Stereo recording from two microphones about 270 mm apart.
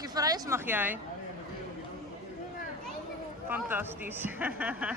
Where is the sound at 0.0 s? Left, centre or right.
Centre.